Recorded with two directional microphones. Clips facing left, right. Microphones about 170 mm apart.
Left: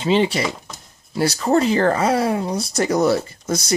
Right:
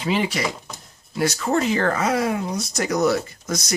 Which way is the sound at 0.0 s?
25° left (ahead or behind).